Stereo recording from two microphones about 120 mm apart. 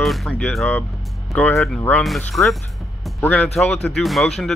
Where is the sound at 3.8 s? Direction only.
Centre (ahead or behind).